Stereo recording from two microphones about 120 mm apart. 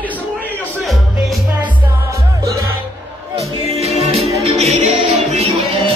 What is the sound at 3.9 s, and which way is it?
Music, 70° right (ahead or behind).